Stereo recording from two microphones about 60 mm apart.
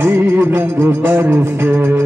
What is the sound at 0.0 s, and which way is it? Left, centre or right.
Music, right.